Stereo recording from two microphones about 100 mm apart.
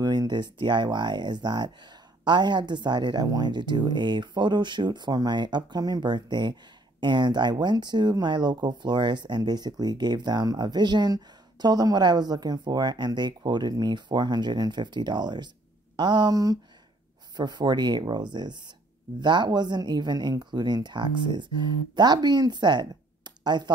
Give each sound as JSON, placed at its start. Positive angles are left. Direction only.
{"t": 0.0, "sound": "speech", "side_deg": -45}